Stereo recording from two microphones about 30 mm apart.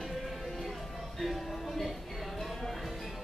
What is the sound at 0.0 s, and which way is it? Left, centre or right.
Music, centre.